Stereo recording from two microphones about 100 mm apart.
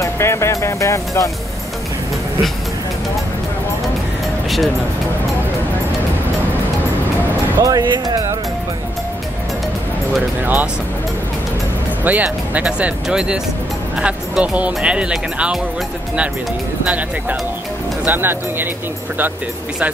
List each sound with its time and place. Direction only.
0.0 s music: 25° left (ahead or behind)
7.6 s speech: 40° right (ahead or behind)
10.4 s speech: 20° right (ahead or behind)
12.0 s speech: 15° right (ahead or behind)
18.0 s speech: 20° right (ahead or behind)